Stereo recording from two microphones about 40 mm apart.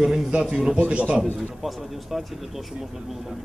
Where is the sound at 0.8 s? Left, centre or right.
Right.